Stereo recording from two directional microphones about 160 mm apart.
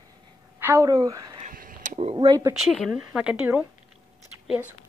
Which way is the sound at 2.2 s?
20° right (ahead or behind).